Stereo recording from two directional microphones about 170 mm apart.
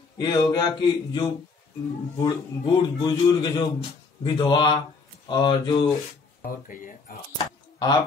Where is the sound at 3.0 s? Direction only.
25° left (ahead or behind).